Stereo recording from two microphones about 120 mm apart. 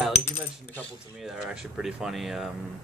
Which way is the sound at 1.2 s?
5° right (ahead or behind).